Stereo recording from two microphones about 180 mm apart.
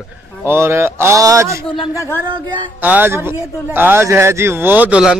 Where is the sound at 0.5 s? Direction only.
15° right (ahead or behind).